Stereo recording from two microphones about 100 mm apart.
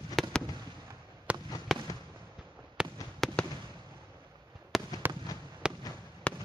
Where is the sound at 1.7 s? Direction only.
Centre (ahead or behind).